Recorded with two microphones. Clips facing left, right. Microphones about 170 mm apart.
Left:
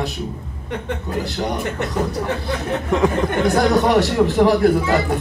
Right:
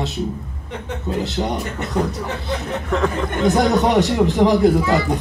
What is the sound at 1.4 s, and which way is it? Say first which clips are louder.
Speech: even; 20° right (ahead or behind).